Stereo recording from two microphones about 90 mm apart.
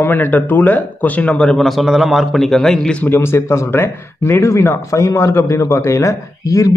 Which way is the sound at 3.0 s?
25° left (ahead or behind).